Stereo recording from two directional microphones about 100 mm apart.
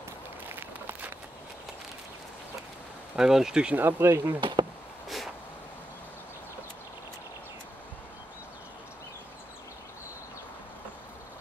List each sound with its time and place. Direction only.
0.5 s a sound: 20° right (ahead or behind)
3.2 s speech: 5° right (ahead or behind)
3.8 s speech: 25° right (ahead or behind)
4.4 s speech: 50° right (ahead or behind)